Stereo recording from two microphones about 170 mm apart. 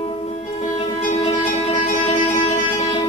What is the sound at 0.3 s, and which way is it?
Music, 40° left (ahead or behind).